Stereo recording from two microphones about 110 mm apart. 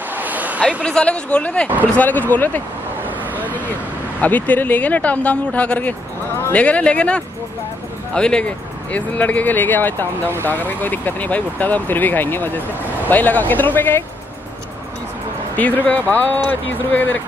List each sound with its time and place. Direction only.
0.1 s a sound: 15° right (ahead or behind)
0.8 s speech: 10° left (ahead or behind)
3.3 s vehicle: 15° right (ahead or behind)
4.2 s speech: 15° left (ahead or behind)
15.5 s speech: 15° left (ahead or behind)